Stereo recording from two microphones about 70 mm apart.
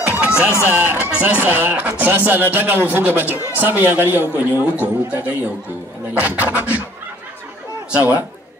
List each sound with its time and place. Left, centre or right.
0.0 s a sound: centre
0.3 s speech: left
0.7 s speech: right